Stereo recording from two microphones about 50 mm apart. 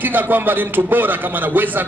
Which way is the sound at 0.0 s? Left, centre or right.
Right.